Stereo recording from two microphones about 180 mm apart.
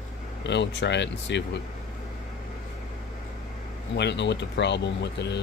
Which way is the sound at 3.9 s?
75° left (ahead or behind).